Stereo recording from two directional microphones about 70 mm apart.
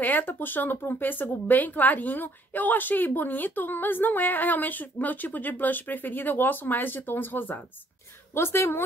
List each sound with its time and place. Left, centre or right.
0.0 s a woman's voice: left